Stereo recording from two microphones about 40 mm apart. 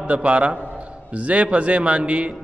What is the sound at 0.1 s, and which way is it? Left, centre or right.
A man's voice, right.